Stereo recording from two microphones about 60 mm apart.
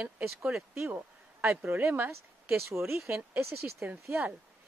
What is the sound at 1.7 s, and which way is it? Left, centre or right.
Speech, right.